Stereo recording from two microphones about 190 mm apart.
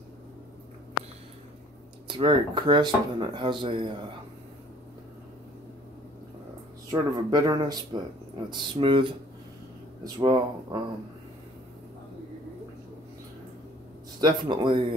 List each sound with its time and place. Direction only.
2.0 s speech: 25° right (ahead or behind)
6.9 s speech: 20° right (ahead or behind)
10.0 s speech: 20° right (ahead or behind)
14.2 s speech: 25° right (ahead or behind)